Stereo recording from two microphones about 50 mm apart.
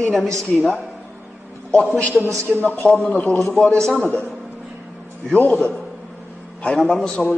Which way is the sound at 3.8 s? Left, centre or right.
Left.